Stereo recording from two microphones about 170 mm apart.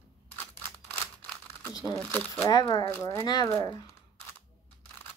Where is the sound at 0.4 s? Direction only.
10° left (ahead or behind).